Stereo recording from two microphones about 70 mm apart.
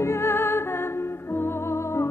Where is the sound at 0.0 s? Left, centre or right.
Left.